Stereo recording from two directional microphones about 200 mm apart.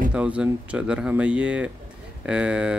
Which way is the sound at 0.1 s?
5° right (ahead or behind).